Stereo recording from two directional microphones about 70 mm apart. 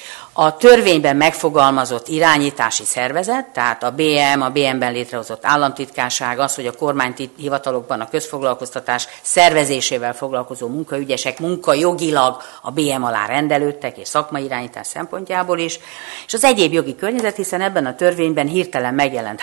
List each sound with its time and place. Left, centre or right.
0.4 s a man's voice: centre